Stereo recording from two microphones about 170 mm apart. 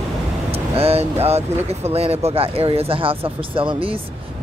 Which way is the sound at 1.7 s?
35° right (ahead or behind).